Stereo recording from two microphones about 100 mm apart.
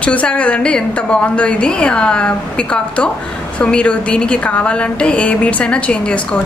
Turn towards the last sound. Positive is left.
turn(degrees=15)  # may be behind; listen again after turning